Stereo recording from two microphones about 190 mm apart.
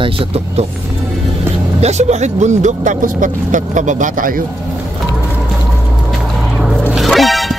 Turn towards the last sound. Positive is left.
turn(degrees=0)  # may be behind; listen again after turning